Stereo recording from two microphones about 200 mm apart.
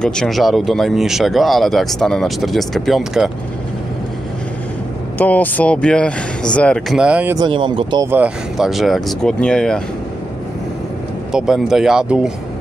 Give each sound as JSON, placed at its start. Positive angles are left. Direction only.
{"t": 0.0, "sound": "speech", "side_deg": 5}
{"t": 5.2, "sound": "speech", "side_deg": 5}
{"t": 7.3, "sound": "speech", "side_deg": -25}
{"t": 8.1, "sound": "speech", "side_deg": -5}
{"t": 11.3, "sound": "speech", "side_deg": 0}